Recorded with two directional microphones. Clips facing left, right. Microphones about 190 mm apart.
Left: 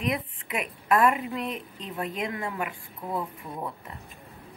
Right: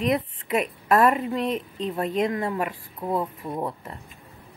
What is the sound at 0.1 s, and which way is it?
A woman's voice, 40° right (ahead or behind).